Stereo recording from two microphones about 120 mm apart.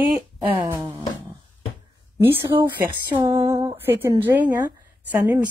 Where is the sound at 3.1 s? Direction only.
20° right (ahead or behind).